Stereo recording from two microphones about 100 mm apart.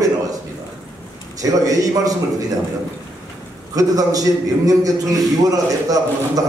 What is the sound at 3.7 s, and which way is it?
A man's voice, 35° right (ahead or behind).